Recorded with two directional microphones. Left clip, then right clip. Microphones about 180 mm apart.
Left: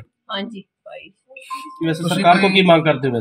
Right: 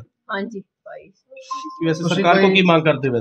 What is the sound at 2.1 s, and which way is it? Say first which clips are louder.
Speech: left 1 dB; 40° left (ahead or behind).